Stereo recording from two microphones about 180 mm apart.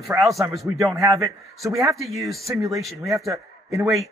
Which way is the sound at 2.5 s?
20° right (ahead or behind).